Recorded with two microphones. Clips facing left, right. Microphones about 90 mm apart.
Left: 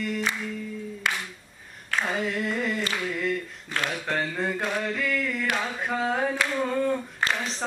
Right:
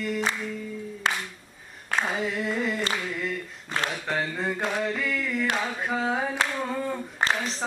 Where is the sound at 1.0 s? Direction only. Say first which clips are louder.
Right 2 dB; 30° right (ahead or behind).